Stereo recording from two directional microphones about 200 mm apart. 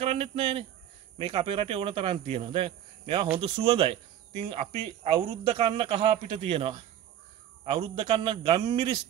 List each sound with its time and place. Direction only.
0.0 s speech: 30° right (ahead or behind)